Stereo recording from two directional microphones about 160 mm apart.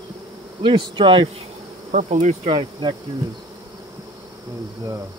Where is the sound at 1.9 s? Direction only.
50° right (ahead or behind).